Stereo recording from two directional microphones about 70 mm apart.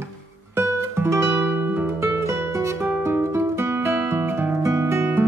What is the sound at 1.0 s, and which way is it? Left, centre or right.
Music, right.